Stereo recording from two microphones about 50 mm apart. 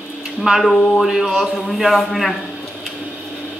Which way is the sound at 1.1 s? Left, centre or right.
Centre.